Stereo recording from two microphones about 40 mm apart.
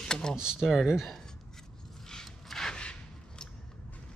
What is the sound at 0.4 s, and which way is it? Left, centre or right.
Speech, right.